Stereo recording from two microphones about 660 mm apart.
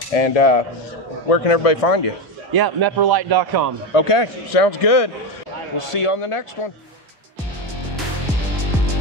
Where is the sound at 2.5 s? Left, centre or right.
Right.